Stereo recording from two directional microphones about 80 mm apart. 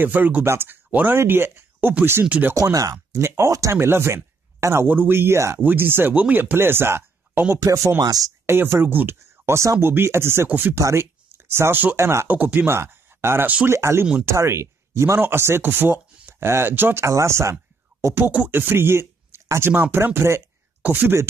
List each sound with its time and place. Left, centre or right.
0.0 s speech: right
2.2 s speech: centre
2.5 s speech: right
3.2 s speech: right
3.7 s speech: right
7.6 s speech: right
8.5 s speech: right
10.8 s speech: right
12.3 s speech: right
12.7 s speech: right